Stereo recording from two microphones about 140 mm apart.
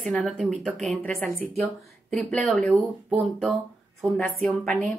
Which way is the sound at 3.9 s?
5° left (ahead or behind).